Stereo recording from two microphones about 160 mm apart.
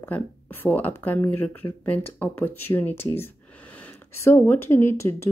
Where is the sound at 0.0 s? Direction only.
10° left (ahead or behind).